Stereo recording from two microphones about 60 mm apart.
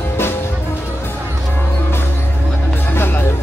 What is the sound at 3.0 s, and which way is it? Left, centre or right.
Music, left.